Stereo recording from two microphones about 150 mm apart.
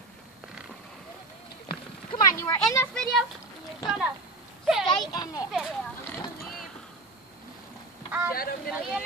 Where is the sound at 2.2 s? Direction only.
20° left (ahead or behind).